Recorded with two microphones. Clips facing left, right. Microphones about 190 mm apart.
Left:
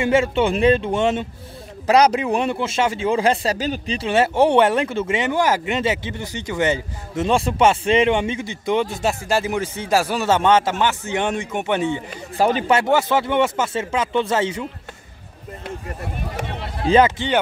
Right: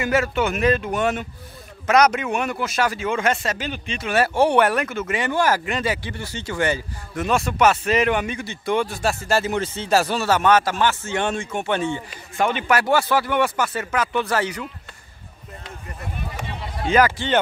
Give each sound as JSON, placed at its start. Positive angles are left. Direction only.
{"t": 0.0, "sound": "speech", "side_deg": 25}
{"t": 4.1, "sound": "speech", "side_deg": 20}
{"t": 10.3, "sound": "a man's voice", "side_deg": 25}
{"t": 12.4, "sound": "speech", "side_deg": 35}
{"t": 12.7, "sound": "speech", "side_deg": 20}
{"t": 16.8, "sound": "speech", "side_deg": 30}